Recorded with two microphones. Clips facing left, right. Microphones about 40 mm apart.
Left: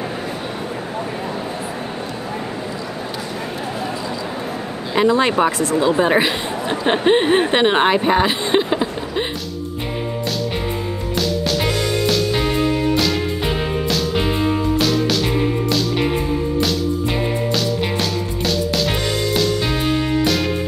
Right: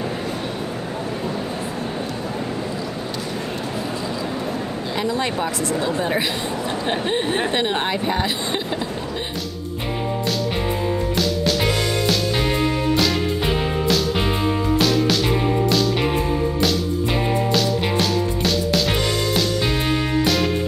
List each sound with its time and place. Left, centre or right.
4.9 s speech: left
11.1 s music: centre